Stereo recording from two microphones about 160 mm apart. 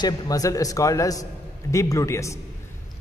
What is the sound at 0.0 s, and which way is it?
A man's voice, 20° left (ahead or behind).